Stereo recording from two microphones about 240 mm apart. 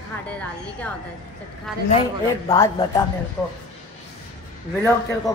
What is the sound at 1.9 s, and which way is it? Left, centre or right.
Speech, left.